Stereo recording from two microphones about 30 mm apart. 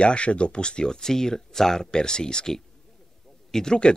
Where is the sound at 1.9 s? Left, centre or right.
Left.